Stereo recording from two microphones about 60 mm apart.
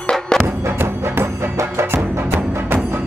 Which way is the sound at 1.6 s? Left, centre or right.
Right.